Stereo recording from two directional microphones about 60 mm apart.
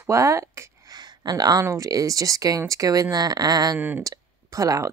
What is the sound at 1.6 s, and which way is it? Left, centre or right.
Speech, right.